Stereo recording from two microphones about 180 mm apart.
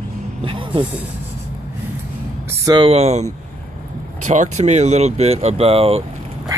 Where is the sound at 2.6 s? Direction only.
25° right (ahead or behind).